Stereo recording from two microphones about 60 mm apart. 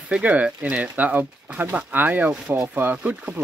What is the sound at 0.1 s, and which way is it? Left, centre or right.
Speech, right.